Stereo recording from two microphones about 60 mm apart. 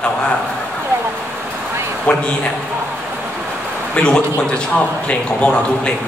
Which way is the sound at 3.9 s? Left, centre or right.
Centre.